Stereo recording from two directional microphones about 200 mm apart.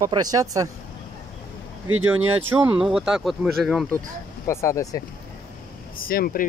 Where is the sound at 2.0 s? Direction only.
10° right (ahead or behind).